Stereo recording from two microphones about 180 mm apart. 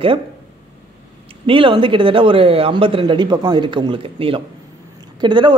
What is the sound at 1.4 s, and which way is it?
A man's voice, 30° right (ahead or behind).